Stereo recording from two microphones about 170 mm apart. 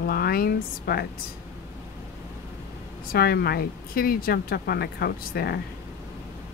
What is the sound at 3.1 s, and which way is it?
Speech, 65° left (ahead or behind).